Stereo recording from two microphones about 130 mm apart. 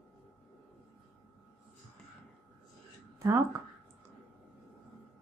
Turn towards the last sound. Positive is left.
turn(degrees=-25)  # may be behind; listen again after turning